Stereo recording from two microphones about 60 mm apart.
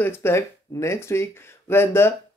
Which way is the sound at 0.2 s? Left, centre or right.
Left.